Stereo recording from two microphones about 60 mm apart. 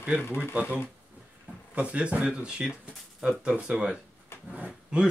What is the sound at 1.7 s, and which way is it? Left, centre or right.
Speech, right.